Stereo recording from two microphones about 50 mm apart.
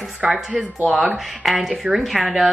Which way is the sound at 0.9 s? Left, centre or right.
Centre.